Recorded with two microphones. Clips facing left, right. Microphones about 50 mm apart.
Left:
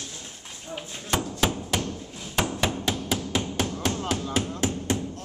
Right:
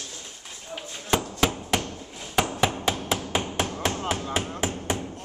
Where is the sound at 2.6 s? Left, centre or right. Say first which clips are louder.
Right 2 dB; centre.